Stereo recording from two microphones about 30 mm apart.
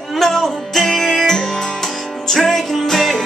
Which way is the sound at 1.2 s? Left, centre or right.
Centre.